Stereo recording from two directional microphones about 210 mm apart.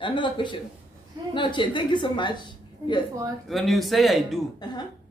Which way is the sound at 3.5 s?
Centre (ahead or behind).